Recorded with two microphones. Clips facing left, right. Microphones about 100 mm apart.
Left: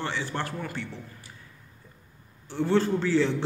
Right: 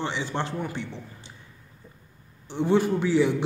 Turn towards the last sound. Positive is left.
turn(degrees=-15)  # may be behind; listen again after turning